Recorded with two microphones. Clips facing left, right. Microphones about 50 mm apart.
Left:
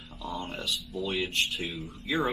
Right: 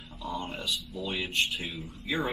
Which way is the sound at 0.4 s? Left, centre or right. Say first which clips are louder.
Left 1 dB; centre.